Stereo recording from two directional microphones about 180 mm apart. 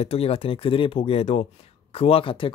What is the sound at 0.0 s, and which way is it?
Speech, 35° left (ahead or behind).